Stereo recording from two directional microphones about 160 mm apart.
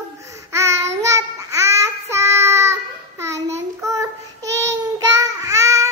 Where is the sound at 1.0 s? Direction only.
20° right (ahead or behind).